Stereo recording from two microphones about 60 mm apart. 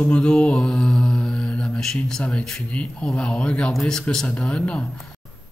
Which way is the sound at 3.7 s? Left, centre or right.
Centre.